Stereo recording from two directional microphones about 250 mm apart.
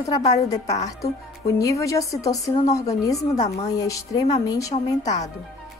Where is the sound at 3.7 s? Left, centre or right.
Centre.